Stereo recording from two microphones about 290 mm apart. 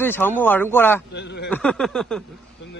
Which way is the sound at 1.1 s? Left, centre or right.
Left.